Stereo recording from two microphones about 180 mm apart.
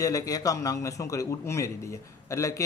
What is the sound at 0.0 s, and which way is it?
A man's voice, 20° left (ahead or behind).